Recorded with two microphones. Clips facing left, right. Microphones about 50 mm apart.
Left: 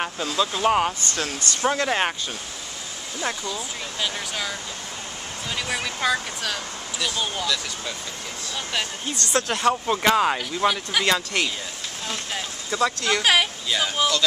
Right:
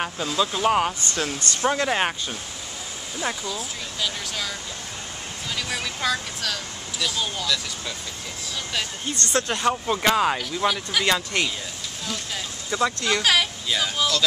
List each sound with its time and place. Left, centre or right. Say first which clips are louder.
0.0 s speech: even; centre
1.0 s speech: right 1 dB; right
1.9 s speech: even; centre
3.2 s speech: even; centre
4.0 s speech: left 1 dB; centre
5.6 s speech: left 2 dB; centre
9.5 s speech: left 3 dB; centre
12.7 s speech: left 1 dB; centre
13.1 s speech: left 3 dB; centre